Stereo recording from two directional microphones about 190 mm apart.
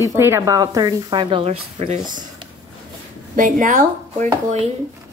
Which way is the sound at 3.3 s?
45° right (ahead or behind).